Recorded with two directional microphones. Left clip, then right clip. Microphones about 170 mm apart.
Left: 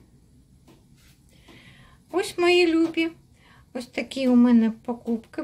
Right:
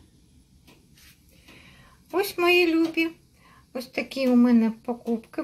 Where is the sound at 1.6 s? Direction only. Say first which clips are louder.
Left 1 dB; centre (ahead or behind).